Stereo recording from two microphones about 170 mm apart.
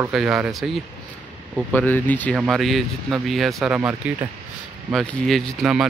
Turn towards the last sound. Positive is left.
turn(degrees=0)  # may be behind; listen again after turning